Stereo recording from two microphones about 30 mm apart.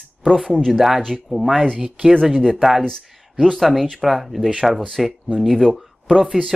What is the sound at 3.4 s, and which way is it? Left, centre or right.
Speech, centre.